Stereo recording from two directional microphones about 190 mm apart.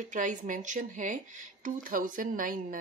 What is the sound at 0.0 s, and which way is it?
Speech, 40° right (ahead or behind).